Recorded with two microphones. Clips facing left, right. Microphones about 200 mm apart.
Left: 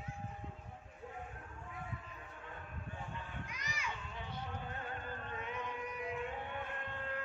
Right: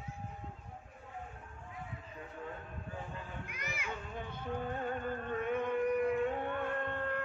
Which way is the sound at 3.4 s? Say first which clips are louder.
Right 3 dB; 55° right (ahead or behind).